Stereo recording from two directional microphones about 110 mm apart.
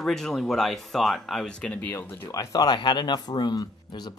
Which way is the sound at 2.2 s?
35° left (ahead or behind).